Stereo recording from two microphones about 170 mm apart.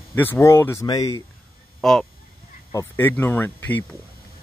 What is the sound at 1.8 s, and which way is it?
Speech, centre (ahead or behind).